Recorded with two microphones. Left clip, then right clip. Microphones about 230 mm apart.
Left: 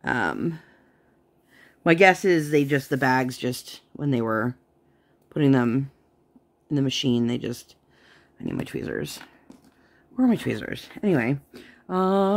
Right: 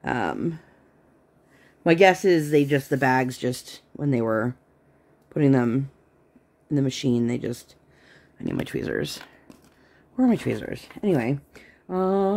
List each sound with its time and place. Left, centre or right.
0.0 s speech: centre
1.8 s speech: centre
11.9 s a sound: centre